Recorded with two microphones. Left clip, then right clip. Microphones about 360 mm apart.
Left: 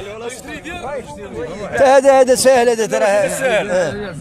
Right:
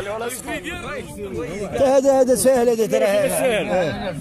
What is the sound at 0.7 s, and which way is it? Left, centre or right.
A man's voice, left.